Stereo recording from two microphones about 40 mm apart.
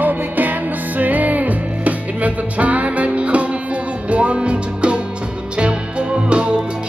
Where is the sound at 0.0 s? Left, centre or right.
Right.